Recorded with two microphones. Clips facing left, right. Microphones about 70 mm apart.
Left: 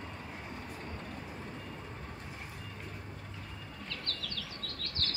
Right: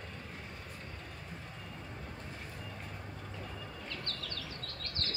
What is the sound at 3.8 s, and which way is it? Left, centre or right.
Bird, right.